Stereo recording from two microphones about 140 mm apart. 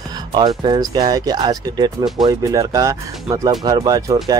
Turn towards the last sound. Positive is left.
turn(degrees=-30)  # may be behind; listen again after turning